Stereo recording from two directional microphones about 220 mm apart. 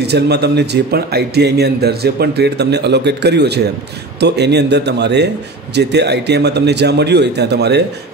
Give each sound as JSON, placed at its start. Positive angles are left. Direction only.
{"t": 0.0, "sound": "speech", "side_deg": -50}